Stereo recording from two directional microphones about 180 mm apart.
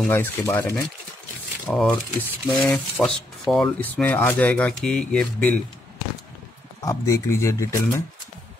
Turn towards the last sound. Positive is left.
turn(degrees=15)  # may be behind; listen again after turning